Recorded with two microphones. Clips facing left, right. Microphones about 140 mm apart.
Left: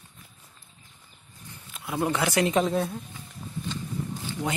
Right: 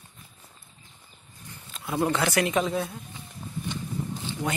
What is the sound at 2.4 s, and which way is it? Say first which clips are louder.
Speech: left 2 dB; 35° left (ahead or behind).